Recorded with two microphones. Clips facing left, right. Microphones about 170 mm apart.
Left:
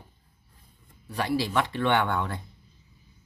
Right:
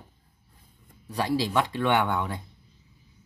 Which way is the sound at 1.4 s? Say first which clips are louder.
Right 1 dB; 15° right (ahead or behind).